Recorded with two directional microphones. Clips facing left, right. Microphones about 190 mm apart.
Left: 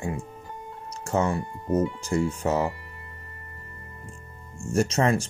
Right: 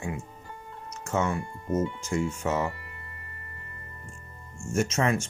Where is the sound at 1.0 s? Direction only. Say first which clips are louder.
Left 3 dB; 35° left (ahead or behind).